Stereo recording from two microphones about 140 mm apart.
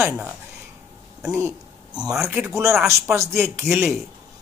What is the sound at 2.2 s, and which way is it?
Speech, 15° right (ahead or behind).